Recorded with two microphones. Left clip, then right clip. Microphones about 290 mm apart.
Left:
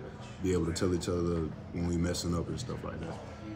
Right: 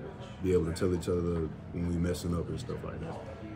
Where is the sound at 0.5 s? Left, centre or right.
Centre.